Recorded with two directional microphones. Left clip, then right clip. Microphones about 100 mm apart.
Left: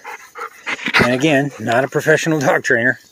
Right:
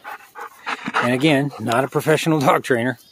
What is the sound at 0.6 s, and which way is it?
Dog, 15° left (ahead or behind).